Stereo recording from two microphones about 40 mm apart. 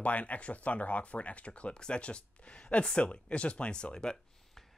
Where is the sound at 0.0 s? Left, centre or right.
Left.